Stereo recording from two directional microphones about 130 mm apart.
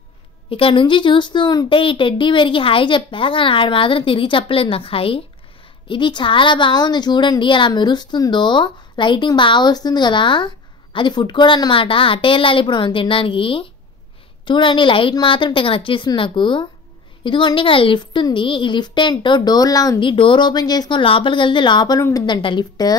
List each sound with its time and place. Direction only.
0.5 s a woman's voice: 45° left (ahead or behind)
21.0 s a woman's voice: 40° left (ahead or behind)